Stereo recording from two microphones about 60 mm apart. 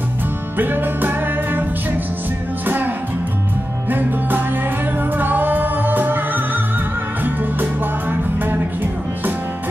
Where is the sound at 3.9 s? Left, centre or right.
Right.